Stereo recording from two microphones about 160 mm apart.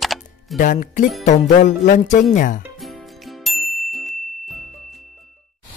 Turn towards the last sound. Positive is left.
turn(degrees=0)  # may be behind; listen again after turning